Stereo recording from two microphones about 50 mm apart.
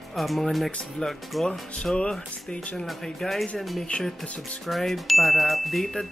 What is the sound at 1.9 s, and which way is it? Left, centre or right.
Speech, centre.